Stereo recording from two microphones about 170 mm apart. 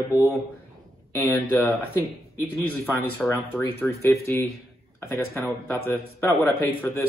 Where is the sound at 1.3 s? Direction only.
20° left (ahead or behind).